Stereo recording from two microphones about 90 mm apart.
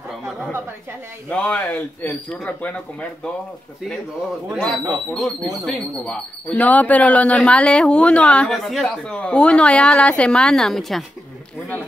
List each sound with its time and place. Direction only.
1.3 s speech: 15° left (ahead or behind)
4.6 s speech: 10° left (ahead or behind)
8.6 s speech: centre (ahead or behind)
8.9 s speech: 10° left (ahead or behind)